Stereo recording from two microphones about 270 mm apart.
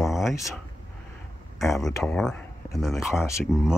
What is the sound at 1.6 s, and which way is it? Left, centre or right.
Speech, centre.